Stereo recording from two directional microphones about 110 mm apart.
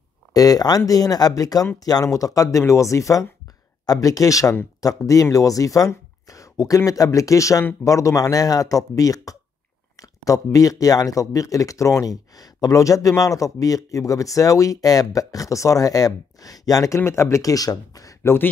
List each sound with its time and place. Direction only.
0.3 s speech: 35° left (ahead or behind)